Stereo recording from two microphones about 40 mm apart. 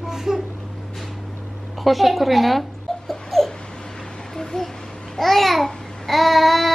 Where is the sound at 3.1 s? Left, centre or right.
Centre.